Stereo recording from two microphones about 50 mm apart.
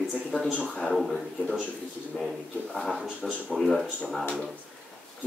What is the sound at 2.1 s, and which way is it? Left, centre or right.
Speech, centre.